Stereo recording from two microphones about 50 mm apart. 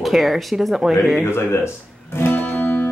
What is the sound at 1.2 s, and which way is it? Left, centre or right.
Guitar, left.